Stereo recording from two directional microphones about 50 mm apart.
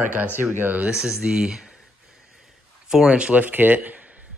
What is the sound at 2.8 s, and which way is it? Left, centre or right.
Speech, centre.